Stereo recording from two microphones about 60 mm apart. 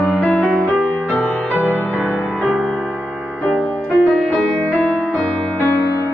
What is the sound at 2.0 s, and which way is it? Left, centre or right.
Music, centre.